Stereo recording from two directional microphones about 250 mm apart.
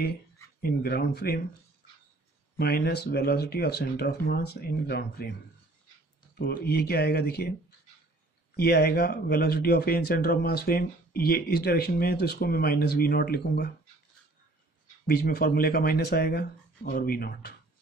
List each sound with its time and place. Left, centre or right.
0.6 s speech: left
2.5 s speech: left
6.3 s speech: left
8.5 s speech: left
15.0 s speech: left